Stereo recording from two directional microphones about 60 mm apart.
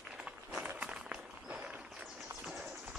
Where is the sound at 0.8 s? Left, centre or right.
Centre.